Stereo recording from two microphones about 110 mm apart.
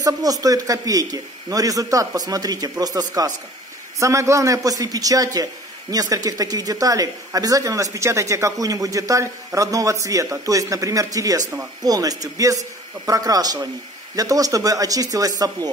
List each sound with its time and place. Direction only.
0.0 s a man's voice: 35° right (ahead or behind)